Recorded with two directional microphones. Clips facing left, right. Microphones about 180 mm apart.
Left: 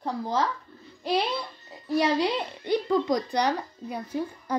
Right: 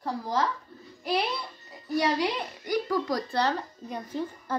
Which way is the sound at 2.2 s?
25° left (ahead or behind).